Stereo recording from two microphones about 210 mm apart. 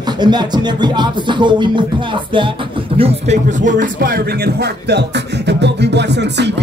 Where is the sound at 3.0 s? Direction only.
35° right (ahead or behind); by 6.5 s 55° right (ahead or behind).